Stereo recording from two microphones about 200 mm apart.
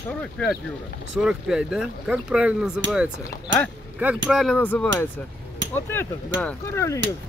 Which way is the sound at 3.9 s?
5° right (ahead or behind).